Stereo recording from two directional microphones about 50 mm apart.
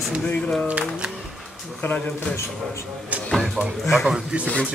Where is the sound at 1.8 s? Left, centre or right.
Left.